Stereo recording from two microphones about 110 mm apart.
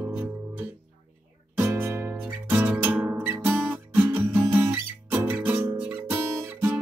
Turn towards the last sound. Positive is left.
turn(degrees=-15)  # may be behind; listen again after turning